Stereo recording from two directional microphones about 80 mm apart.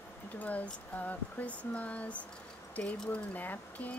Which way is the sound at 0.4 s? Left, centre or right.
Centre.